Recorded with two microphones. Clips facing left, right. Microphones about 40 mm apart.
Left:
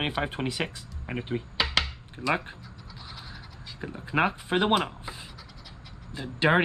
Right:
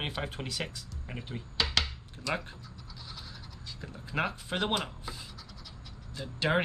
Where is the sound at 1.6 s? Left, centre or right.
Centre.